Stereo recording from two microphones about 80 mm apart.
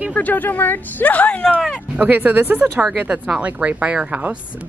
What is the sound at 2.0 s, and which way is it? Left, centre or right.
Speech, right.